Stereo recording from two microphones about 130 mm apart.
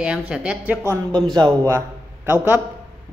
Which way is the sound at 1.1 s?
35° right (ahead or behind).